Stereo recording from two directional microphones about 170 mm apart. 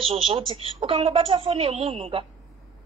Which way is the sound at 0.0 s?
30° right (ahead or behind).